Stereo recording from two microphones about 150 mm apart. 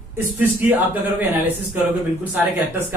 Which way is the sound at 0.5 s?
10° right (ahead or behind).